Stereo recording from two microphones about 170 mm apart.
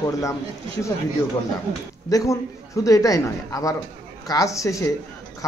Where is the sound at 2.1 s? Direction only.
20° left (ahead or behind).